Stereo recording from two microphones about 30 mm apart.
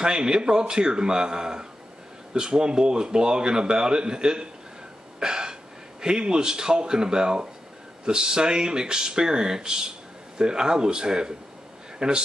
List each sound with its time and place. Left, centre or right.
0.0 s speech: right